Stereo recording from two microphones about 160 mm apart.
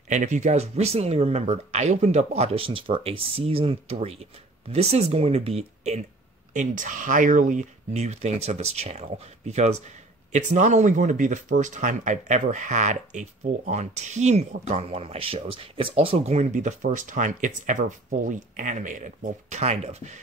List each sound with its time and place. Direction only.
0.1 s speech: 50° right (ahead or behind)
6.5 s speech: 50° right (ahead or behind)